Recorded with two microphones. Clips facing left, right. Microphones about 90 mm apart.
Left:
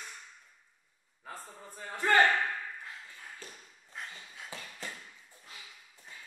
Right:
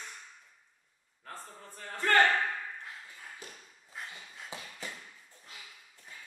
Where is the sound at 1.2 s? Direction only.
10° left (ahead or behind).